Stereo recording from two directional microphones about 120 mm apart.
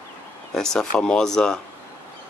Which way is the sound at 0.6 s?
5° left (ahead or behind).